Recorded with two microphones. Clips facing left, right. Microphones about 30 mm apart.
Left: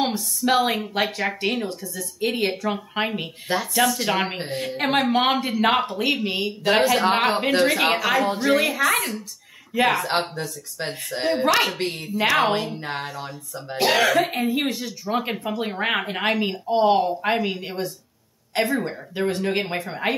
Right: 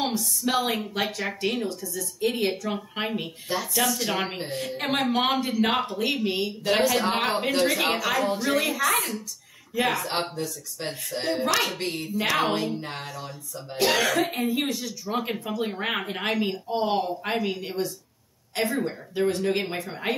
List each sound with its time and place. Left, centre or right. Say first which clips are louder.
0.0 s a woman's voice: left 3 dB; centre